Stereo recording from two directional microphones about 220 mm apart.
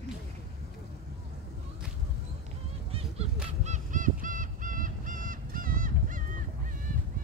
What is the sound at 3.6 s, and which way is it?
Goose, 35° right (ahead or behind).